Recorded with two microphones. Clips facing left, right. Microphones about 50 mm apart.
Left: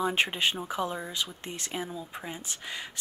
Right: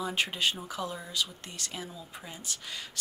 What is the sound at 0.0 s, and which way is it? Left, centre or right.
Speech, left.